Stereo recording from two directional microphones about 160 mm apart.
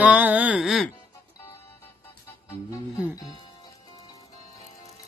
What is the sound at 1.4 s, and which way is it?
Music, 15° left (ahead or behind).